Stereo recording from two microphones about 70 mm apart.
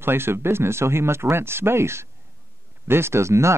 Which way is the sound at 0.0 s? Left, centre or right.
Right.